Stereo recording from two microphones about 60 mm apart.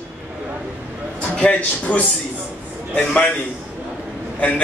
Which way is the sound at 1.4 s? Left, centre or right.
Left.